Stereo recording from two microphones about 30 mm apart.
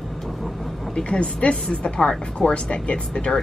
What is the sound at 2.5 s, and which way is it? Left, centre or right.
Speech, left.